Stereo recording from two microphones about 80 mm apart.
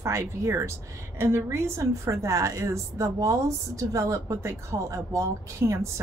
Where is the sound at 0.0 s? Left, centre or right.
Right.